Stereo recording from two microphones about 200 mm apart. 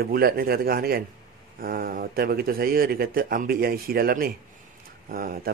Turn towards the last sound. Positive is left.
turn(degrees=-45)  # may be behind; listen again after turning